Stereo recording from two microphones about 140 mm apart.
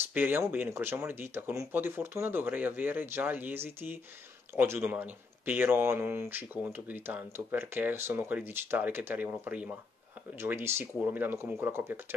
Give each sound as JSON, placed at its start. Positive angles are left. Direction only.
{"t": 0.1, "sound": "speech", "side_deg": -15}